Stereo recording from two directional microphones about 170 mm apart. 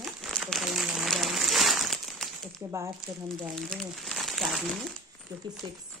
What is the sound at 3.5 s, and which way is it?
Speech, centre (ahead or behind).